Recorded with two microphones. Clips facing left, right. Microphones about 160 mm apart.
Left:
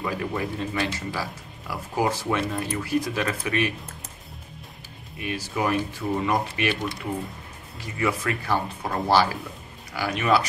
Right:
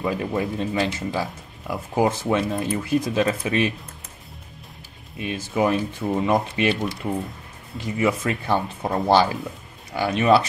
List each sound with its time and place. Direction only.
0.0 s speech: 25° right (ahead or behind)
5.2 s speech: 20° right (ahead or behind)
7.8 s speech: 20° right (ahead or behind)